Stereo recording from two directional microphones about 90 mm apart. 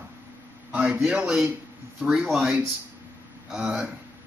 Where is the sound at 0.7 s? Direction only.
15° right (ahead or behind).